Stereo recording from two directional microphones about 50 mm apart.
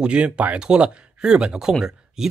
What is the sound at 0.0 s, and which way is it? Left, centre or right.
Speech, right.